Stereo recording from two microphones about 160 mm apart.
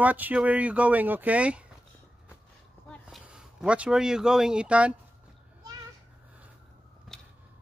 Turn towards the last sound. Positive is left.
turn(degrees=0)  # may be behind; listen again after turning